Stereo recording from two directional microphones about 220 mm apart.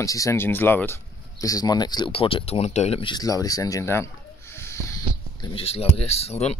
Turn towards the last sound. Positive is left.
turn(degrees=30)  # may be behind; listen again after turning